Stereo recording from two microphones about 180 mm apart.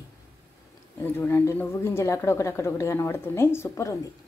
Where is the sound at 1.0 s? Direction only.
15° left (ahead or behind).